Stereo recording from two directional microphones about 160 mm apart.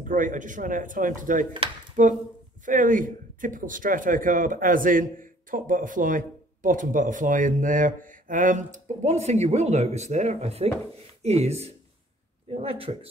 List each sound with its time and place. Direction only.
0.0 s speech: 55° right (ahead or behind); by 13.1 s 35° right (ahead or behind)